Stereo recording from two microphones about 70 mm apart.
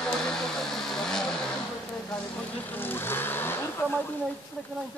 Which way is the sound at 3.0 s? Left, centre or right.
Left.